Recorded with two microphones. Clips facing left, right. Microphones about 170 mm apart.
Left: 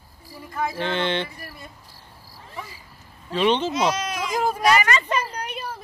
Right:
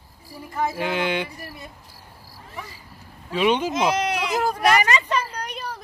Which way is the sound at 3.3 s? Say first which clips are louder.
Even; 5° right (ahead or behind).